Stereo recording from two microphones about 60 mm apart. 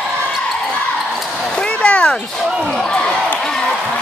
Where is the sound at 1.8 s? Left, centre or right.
Left.